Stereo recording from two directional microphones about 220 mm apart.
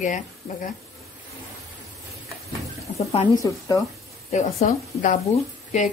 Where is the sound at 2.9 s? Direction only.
40° left (ahead or behind).